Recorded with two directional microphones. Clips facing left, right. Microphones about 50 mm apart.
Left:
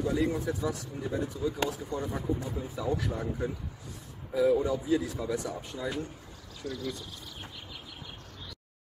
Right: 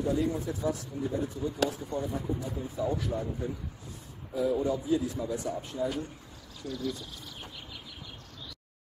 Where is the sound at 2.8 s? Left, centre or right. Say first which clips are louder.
Right 2 dB; left.